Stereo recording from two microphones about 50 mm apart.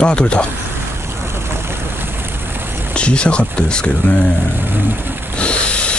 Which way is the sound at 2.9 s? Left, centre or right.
Left.